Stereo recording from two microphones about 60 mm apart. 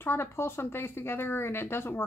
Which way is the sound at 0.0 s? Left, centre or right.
Left.